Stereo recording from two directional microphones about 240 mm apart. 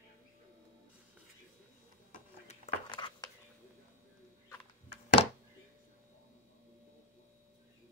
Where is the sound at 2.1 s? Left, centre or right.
Left.